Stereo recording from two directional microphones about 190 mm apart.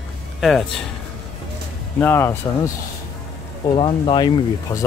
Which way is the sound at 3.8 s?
25° left (ahead or behind).